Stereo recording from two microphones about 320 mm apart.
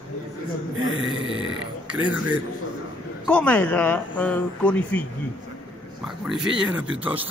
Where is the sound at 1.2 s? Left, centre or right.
Right.